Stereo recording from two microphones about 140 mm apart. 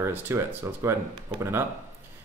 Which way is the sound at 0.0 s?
20° right (ahead or behind).